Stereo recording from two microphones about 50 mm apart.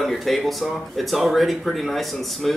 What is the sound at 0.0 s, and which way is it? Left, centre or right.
Speech, centre.